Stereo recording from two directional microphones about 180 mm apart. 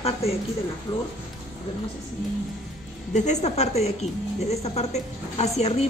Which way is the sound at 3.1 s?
40° left (ahead or behind).